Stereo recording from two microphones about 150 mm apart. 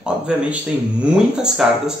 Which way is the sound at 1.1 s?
5° right (ahead or behind).